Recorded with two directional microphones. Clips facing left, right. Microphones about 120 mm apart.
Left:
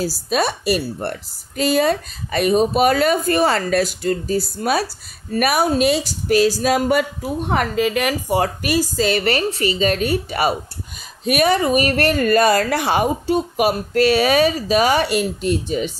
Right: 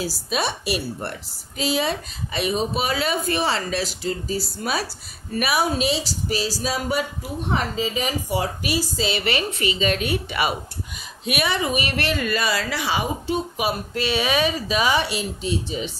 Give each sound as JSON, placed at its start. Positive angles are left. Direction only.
{"t": 0.0, "sound": "a woman's voice", "side_deg": 45}